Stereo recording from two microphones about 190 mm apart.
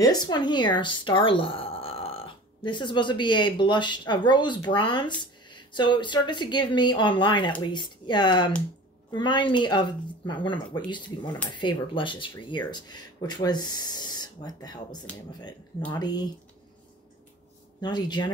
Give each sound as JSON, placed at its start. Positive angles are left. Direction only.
{"t": 0.0, "sound": "speech", "side_deg": 20}
{"t": 17.7, "sound": "speech", "side_deg": 20}